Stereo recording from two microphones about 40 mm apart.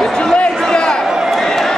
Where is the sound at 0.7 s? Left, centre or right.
Left.